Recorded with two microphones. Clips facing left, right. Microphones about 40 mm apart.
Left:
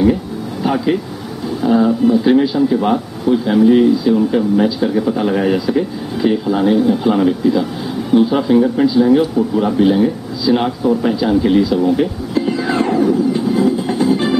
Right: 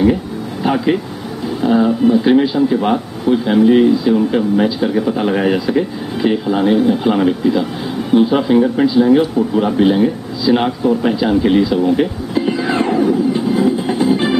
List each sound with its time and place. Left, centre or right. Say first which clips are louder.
0.7 s speech: right 1 dB; centre